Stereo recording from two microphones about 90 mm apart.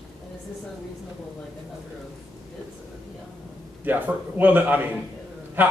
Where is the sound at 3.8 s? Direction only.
20° right (ahead or behind).